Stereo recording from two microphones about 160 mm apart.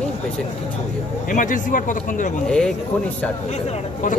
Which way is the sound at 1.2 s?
55° left (ahead or behind).